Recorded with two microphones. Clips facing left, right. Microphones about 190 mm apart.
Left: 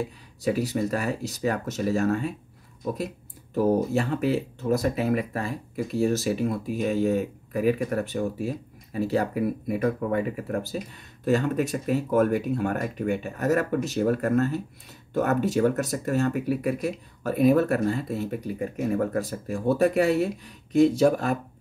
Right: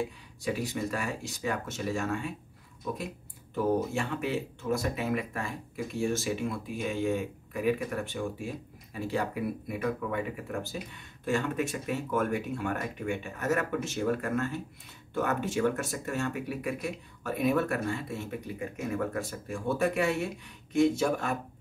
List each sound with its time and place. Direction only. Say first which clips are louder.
0.0 s speech: left 5 dB; 40° left (ahead or behind)
3.5 s speech: left 6 dB; 40° left (ahead or behind)